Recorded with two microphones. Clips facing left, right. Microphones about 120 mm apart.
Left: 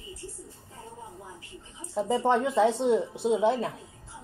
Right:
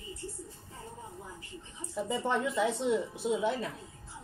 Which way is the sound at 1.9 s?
30° left (ahead or behind).